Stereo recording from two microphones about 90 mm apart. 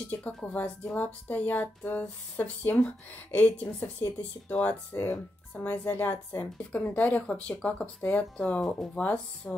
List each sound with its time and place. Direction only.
0.1 s speech: 15° left (ahead or behind)